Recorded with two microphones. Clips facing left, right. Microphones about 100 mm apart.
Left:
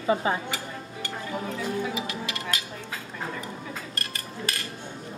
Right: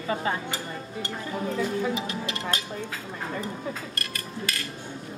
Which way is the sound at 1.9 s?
35° right (ahead or behind).